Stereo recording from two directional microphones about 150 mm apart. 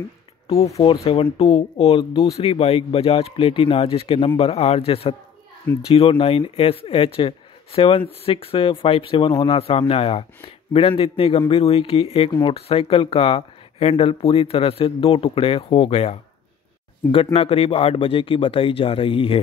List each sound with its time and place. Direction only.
1.2 s a man's voice: 40° left (ahead or behind)